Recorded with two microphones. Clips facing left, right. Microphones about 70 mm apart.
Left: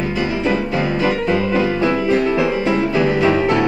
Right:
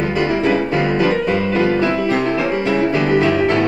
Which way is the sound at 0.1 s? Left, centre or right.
Right.